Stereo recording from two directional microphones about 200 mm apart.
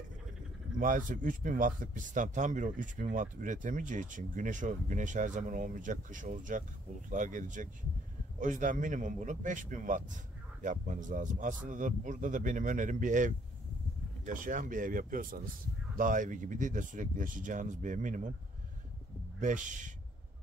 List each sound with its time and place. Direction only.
0.7 s speech: 40° right (ahead or behind)
19.4 s speech: 40° right (ahead or behind)